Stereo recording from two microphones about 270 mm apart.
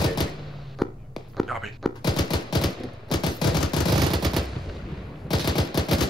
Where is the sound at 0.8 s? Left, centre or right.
Centre.